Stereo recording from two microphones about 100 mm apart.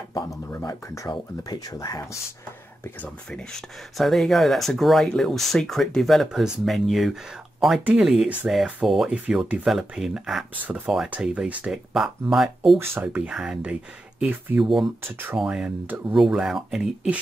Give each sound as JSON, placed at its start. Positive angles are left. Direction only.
{"t": 0.3, "sound": "speech", "side_deg": 35}
{"t": 3.3, "sound": "speech", "side_deg": 5}
{"t": 11.1, "sound": "speech", "side_deg": -15}
{"t": 11.9, "sound": "speech", "side_deg": -5}
{"t": 12.7, "sound": "speech", "side_deg": -25}
{"t": 13.0, "sound": "speech", "side_deg": -15}
{"t": 15.0, "sound": "speech", "side_deg": -20}
{"t": 15.3, "sound": "speech", "side_deg": -5}